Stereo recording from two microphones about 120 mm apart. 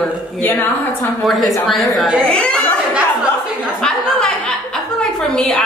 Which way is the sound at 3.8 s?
5° left (ahead or behind).